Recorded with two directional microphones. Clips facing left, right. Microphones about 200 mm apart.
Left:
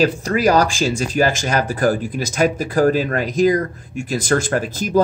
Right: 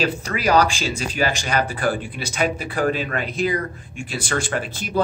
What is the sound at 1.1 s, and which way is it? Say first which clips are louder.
Speech: left 2 dB; 45° left (ahead or behind).